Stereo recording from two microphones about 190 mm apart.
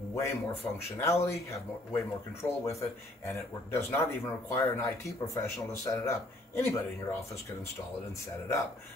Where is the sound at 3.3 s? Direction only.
15° left (ahead or behind).